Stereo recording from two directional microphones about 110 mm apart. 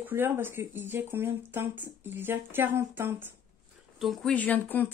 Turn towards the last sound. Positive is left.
turn(degrees=15)  # may be behind; listen again after turning